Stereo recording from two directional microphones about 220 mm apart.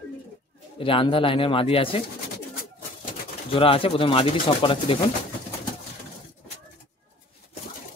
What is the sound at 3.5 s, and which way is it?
Speech, 25° left (ahead or behind).